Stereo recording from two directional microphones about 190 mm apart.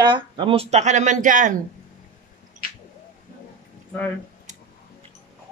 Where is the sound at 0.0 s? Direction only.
25° right (ahead or behind); by 1.6 s 40° right (ahead or behind).